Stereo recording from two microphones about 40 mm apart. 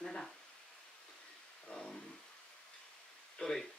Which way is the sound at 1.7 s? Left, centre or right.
Left.